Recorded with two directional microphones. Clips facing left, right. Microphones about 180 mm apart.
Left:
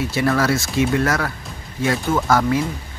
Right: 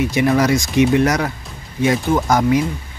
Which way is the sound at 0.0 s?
15° right (ahead or behind).